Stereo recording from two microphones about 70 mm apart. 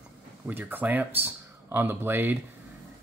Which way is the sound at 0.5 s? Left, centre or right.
Right.